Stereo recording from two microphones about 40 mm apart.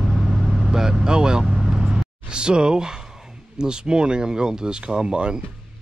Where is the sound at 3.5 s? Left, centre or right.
Right.